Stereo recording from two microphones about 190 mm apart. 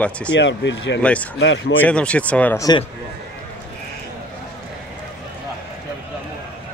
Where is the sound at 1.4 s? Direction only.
80° left.